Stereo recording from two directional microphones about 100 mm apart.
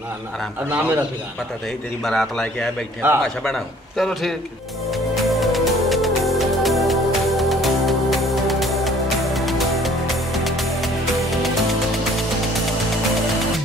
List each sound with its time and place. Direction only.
0.7 s a man's voice: 15° right (ahead or behind)
2.0 s a man's voice: 5° left (ahead or behind)
5.3 s music: centre (ahead or behind)